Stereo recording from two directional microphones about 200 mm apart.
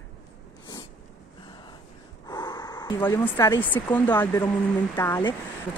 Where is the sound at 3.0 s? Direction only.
10° left (ahead or behind).